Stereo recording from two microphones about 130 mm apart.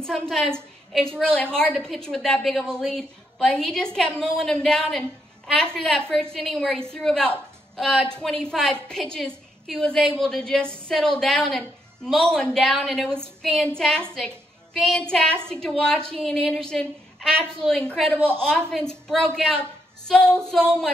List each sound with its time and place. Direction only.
0.0 s a woman's voice: 5° left (ahead or behind)
18.1 s a woman's voice: 15° right (ahead or behind)
18.4 s a woman's voice: 5° left (ahead or behind)